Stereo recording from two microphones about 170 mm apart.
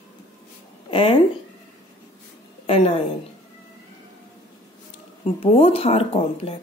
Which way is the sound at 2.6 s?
35° left (ahead or behind).